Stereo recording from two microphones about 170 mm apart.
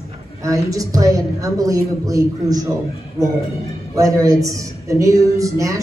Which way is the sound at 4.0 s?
20° right (ahead or behind).